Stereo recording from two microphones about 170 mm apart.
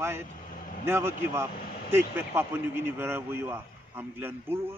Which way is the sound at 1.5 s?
65° left (ahead or behind).